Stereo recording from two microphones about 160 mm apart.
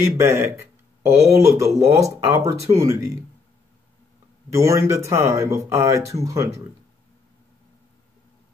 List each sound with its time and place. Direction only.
0.2 s speech: 15° right (ahead or behind)
4.5 s speech: 20° right (ahead or behind)